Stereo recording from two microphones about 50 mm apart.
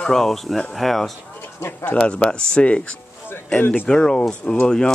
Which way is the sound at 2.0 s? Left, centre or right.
Centre.